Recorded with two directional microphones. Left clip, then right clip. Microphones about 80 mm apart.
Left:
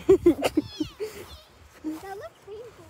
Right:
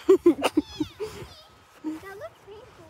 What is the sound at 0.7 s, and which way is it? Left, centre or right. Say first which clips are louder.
Cat: right 1 dB; centre.